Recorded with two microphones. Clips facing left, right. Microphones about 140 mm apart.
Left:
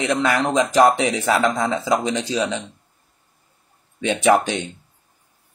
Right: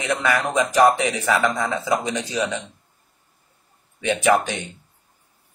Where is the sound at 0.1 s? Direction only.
20° left (ahead or behind).